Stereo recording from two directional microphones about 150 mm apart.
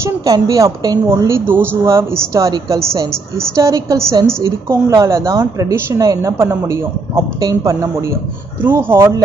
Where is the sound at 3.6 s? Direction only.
20° right (ahead or behind).